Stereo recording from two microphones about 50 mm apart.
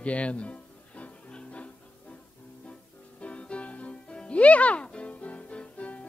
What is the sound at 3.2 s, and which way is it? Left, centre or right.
Music, left.